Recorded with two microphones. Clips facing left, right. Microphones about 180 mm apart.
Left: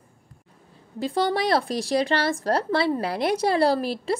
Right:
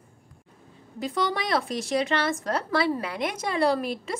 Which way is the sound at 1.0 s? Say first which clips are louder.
Left 4 dB; 30° left (ahead or behind).